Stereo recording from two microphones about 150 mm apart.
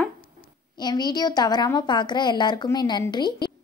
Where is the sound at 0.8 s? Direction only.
30° left (ahead or behind).